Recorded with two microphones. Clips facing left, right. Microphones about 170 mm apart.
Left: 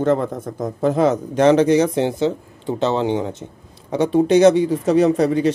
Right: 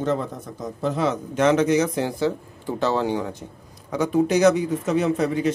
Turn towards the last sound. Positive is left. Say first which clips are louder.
# left 6 dB
turn(degrees=35)  # may be behind; listen again after turning